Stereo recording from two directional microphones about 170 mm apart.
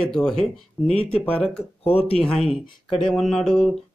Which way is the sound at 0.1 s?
5° left (ahead or behind).